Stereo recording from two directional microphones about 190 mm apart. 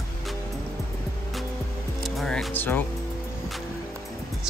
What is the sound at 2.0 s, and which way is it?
Music, centre (ahead or behind).